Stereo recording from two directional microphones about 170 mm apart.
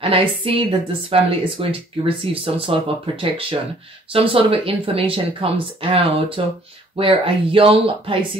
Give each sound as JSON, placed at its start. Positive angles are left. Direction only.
{"t": 0.0, "sound": "speech", "side_deg": -35}